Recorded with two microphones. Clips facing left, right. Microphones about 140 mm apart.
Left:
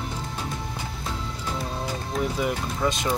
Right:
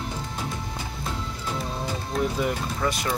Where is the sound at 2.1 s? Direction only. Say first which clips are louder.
Right 1 dB; 5° left (ahead or behind).